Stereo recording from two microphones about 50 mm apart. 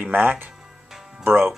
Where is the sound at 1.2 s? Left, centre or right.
Right.